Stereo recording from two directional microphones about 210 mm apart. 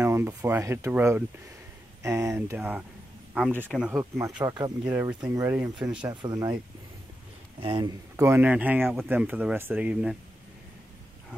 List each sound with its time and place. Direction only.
0.0 s speech: 10° right (ahead or behind)
4.4 s speech: 20° right (ahead or behind); by 6.0 s 5° right (ahead or behind)
6.0 s speech: 15° right (ahead or behind)
7.6 s speech: 20° right (ahead or behind)